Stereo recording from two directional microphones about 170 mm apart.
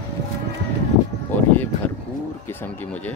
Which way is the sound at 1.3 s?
10° left (ahead or behind).